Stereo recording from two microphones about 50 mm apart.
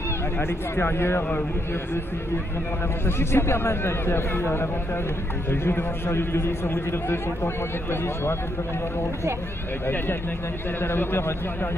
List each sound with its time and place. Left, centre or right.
0.4 s speech: left
3.1 s speech: left
10.8 s speech: left